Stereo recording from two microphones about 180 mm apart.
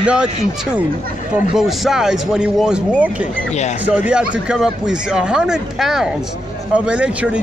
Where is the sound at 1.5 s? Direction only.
Centre (ahead or behind).